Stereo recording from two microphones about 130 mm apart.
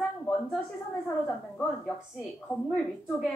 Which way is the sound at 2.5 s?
15° left (ahead or behind).